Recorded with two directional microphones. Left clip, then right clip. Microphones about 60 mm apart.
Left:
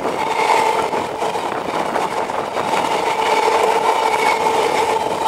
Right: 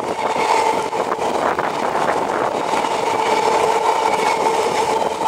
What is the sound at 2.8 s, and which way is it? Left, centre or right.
Vehicle, left.